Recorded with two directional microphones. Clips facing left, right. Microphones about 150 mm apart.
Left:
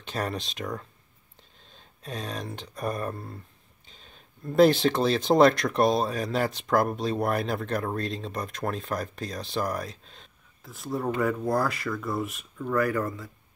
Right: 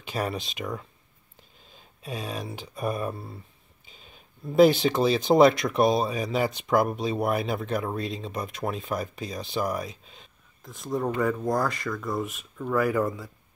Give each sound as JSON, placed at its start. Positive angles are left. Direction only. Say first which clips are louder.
{"t": 0.0, "sound": "speech", "louder": "right 1 dB", "side_deg": -5}